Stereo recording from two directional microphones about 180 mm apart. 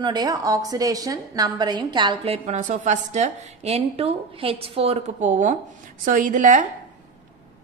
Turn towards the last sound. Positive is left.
turn(degrees=-45)  # may be behind; listen again after turning